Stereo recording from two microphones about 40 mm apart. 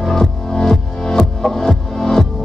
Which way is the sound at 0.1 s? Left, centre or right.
Centre.